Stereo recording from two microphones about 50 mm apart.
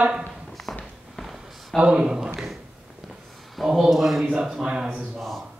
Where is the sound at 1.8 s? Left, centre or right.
Centre.